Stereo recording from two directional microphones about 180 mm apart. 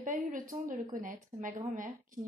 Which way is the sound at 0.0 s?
50° right (ahead or behind).